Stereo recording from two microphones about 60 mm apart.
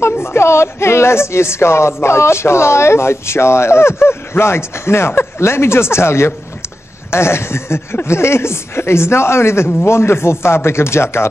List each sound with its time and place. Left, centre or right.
0.0 s a woman's voice: left